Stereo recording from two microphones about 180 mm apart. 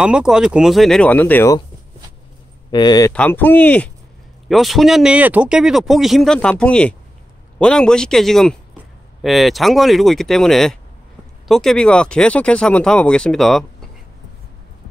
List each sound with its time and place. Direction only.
0.0 s speech: 5° right (ahead or behind); by 1.6 s 15° left (ahead or behind)
2.7 s speech: 25° left (ahead or behind)
3.1 s speech: 10° left (ahead or behind)